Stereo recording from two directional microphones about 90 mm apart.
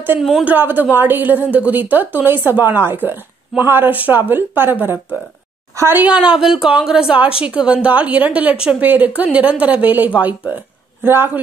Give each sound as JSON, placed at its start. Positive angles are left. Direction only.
{"t": 0.2, "sound": "speech", "side_deg": -5}
{"t": 0.5, "sound": "a woman's voice", "side_deg": -20}
{"t": 6.0, "sound": "a woman's voice", "side_deg": -10}